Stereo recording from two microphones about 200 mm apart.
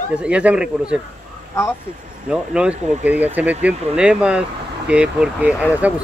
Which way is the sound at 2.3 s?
5° right (ahead or behind).